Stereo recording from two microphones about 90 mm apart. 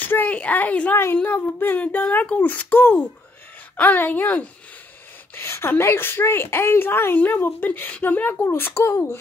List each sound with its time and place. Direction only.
0.0 s a child's voice: 20° left (ahead or behind)
5.3 s a woman's voice: 30° left (ahead or behind)
8.7 s speech: 35° left (ahead or behind)